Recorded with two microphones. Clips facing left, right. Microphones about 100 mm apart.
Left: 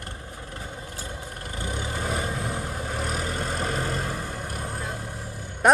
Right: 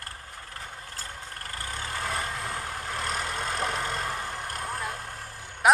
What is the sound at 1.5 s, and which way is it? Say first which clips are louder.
Vehicle: left 4 dB; 20° left (ahead or behind).